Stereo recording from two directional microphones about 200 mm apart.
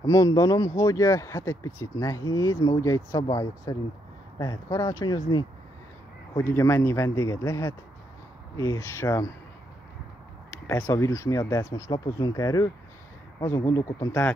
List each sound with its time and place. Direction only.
0.0 s speech: 15° left (ahead or behind)
10.7 s speech: 15° left (ahead or behind)